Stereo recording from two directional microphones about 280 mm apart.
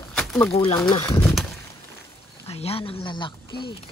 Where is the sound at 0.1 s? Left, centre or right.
Centre.